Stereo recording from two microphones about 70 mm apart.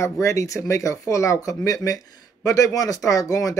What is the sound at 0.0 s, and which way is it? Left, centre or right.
Speech, left.